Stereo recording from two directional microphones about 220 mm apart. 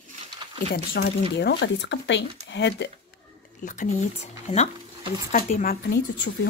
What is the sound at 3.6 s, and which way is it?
Speech, 35° left (ahead or behind).